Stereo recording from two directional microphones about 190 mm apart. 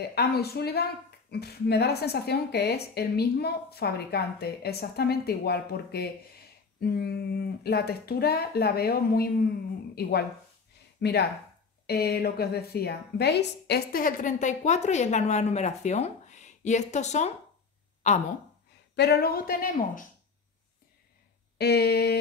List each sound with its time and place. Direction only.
0.0 s a woman's voice: 55° left (ahead or behind)
11.0 s a woman's voice: 60° left (ahead or behind); by 18.2 s 35° left (ahead or behind)
18.9 s a woman's voice: 60° left (ahead or behind)
21.5 s a woman's voice: 60° left (ahead or behind)